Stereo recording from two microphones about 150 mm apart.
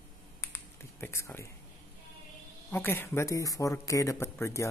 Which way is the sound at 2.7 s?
15° left (ahead or behind).